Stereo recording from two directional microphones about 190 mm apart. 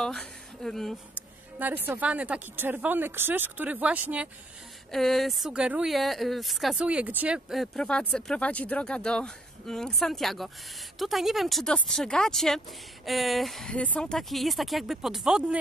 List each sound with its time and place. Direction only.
0.0 s speech: centre (ahead or behind)
1.1 s a sound: 10° right (ahead or behind)
1.9 s speech: 5° right (ahead or behind)